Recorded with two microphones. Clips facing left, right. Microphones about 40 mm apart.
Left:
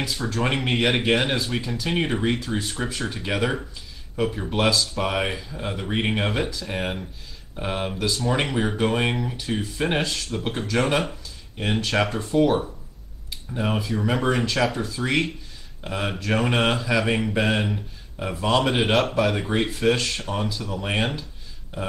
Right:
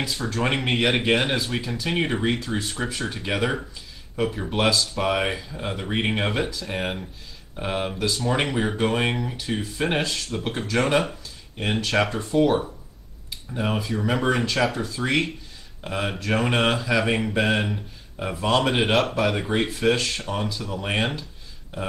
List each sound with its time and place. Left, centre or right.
0.3 s speech: centre